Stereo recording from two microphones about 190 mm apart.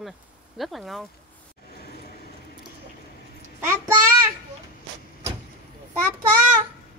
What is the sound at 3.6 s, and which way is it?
Child singing, 15° right (ahead or behind).